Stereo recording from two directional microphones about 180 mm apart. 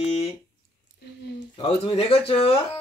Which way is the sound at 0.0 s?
35° left (ahead or behind).